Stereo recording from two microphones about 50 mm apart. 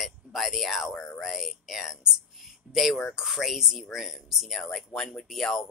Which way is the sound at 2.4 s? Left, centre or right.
Centre.